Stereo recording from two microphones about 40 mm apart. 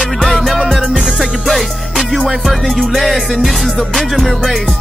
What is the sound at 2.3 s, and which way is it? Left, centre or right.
Speech, centre.